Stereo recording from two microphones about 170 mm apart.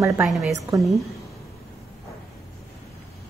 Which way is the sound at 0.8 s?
Centre (ahead or behind).